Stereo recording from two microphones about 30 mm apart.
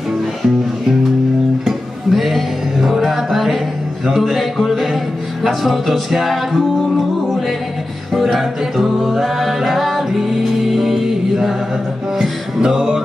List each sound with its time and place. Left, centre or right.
1.7 s music: centre
8.1 s music: centre
12.2 s music: centre